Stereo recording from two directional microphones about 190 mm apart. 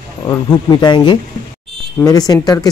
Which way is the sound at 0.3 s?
20° left (ahead or behind).